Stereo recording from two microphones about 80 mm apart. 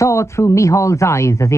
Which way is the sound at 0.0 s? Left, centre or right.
Left.